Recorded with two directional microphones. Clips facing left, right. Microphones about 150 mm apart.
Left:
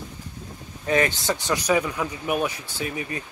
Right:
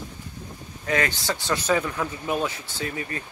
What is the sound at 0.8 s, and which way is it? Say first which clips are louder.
Speech: left 3 dB; 20° left (ahead or behind).